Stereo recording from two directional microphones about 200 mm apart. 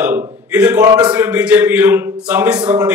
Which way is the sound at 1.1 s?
5° right (ahead or behind).